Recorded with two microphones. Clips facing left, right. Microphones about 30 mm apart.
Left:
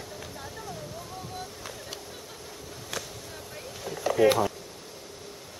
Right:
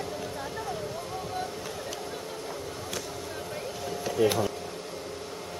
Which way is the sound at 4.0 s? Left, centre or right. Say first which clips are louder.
Left 4 dB; centre.